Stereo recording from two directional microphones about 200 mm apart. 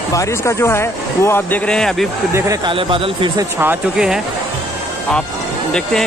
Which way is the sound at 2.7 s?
25° right (ahead or behind).